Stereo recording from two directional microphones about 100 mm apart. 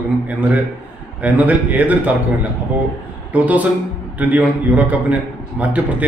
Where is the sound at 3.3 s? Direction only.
15° right (ahead or behind).